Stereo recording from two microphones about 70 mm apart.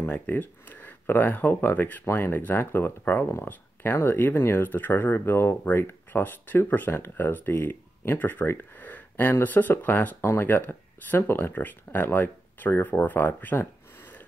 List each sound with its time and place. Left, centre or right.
0.0 s speech: left